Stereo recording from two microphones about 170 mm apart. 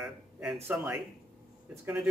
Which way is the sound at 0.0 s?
5° right (ahead or behind).